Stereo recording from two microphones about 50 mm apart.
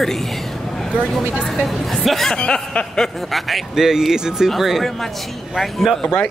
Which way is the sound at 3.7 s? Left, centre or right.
Centre.